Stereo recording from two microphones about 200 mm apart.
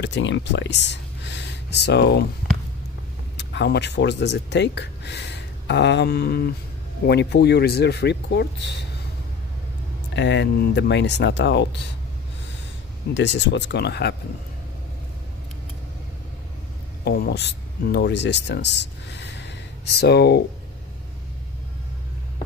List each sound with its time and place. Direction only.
0.0 s speech: 65° left (ahead or behind)
3.3 s speech: 60° left (ahead or behind)
10.1 s speech: 60° left (ahead or behind)
13.1 s speech: 65° left (ahead or behind)
17.0 s speech: 50° left (ahead or behind)